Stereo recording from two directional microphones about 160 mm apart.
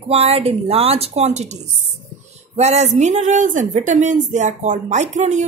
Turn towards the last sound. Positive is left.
turn(degrees=-50)  # may be behind; listen again after turning